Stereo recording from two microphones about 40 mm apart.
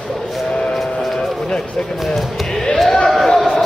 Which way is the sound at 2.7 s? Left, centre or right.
Centre.